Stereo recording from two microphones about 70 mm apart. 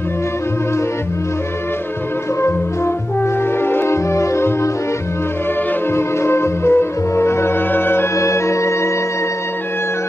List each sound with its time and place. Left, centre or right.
3.6 s music: left
5.9 s music: left
8.2 s organ: left